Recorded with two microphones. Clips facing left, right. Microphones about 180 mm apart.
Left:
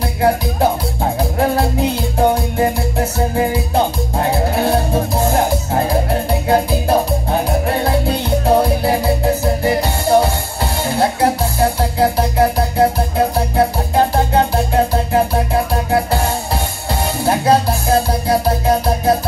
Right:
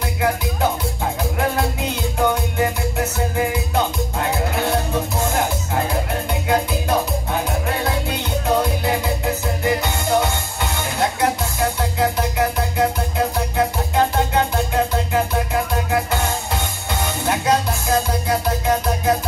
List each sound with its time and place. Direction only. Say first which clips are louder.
0.2 s music: left 6 dB; 35° left (ahead or behind)
2.1 s music: left 4 dB; 35° left (ahead or behind)
6.4 s music: left 4 dB; 35° left (ahead or behind)